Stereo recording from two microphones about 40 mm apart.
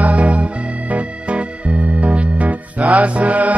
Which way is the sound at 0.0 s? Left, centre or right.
Right.